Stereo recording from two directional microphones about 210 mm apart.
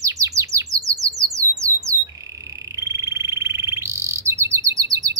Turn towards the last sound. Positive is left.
turn(degrees=-15)  # may be behind; listen again after turning